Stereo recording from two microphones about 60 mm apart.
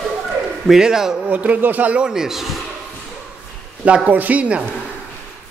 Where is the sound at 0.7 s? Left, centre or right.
Centre.